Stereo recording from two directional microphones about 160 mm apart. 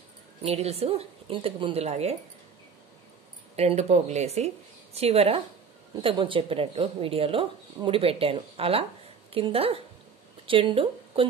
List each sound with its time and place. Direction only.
0.4 s speech: 40° right (ahead or behind)
3.5 s speech: 40° right (ahead or behind)